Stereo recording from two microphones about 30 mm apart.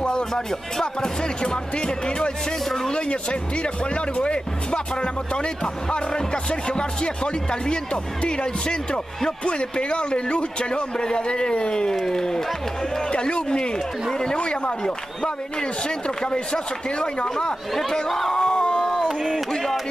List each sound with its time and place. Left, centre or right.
0.3 s speech: centre
1.4 s music: left
2.9 s speech: left
7.6 s music: left
8.2 s speech: left
12.1 s speech: centre
13.1 s speech: left
16.3 s speech: left
18.3 s a sound: left
19.5 s speech: centre